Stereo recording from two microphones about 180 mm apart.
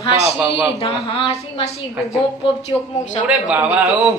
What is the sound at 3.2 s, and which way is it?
Speech, 5° right (ahead or behind).